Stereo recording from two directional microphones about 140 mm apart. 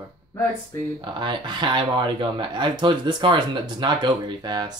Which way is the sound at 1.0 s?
35° right (ahead or behind).